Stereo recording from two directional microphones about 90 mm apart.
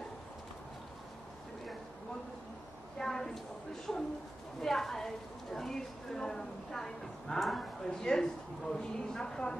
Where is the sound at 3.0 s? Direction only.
5° left (ahead or behind).